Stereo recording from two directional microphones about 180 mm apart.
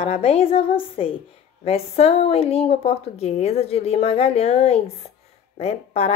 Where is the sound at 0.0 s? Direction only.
35° left (ahead or behind).